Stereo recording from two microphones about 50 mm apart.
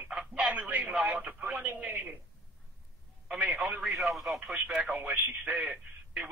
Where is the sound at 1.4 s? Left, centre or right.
Right.